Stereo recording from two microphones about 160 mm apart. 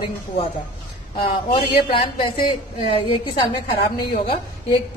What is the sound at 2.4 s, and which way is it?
Speech, 35° left (ahead or behind).